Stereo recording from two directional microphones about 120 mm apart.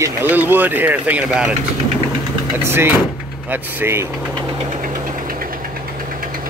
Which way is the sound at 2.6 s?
20° right (ahead or behind).